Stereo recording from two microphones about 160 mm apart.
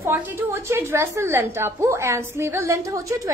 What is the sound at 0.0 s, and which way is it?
A woman's voice, 15° right (ahead or behind).